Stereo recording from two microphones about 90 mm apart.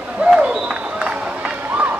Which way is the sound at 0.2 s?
10° right (ahead or behind).